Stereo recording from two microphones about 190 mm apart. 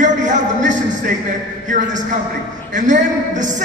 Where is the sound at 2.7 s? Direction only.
40° right (ahead or behind).